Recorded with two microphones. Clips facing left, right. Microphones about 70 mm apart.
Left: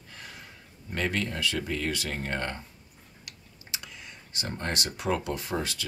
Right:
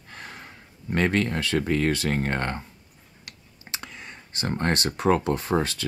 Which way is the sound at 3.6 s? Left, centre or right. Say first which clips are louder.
Right 4 dB; right.